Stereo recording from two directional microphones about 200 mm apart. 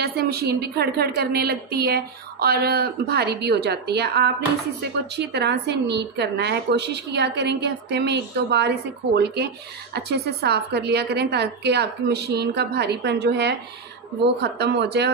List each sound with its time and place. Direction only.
0.0 s a woman's voice: 50° right (ahead or behind)